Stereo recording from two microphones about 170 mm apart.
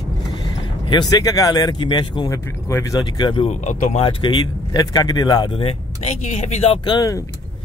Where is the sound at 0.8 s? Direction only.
25° left (ahead or behind); by 4.1 s 40° left (ahead or behind).